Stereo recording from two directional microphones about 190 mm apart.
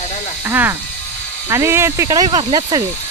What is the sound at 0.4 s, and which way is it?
Speech, 10° right (ahead or behind).